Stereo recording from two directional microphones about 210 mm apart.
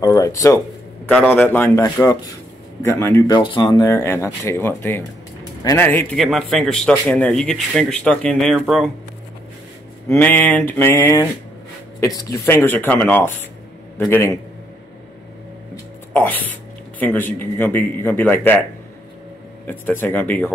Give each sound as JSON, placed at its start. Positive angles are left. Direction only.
{"t": 0.0, "sound": "a man's voice", "side_deg": 15}
{"t": 10.0, "sound": "speech", "side_deg": 10}
{"t": 16.1, "sound": "speech", "side_deg": 10}
{"t": 19.6, "sound": "speech", "side_deg": 10}